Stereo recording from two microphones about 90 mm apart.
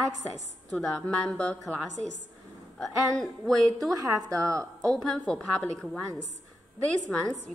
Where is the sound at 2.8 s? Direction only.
5° left (ahead or behind).